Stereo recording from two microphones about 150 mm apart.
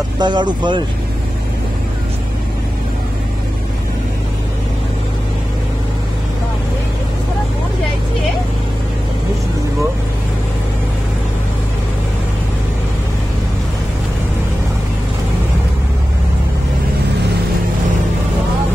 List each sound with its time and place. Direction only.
0.2 s speech: 30° right (ahead or behind)